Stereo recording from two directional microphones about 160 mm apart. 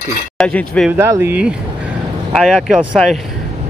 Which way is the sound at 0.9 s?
15° right (ahead or behind).